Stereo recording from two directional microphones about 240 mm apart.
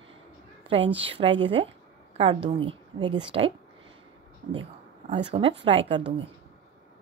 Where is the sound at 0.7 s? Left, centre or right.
Right.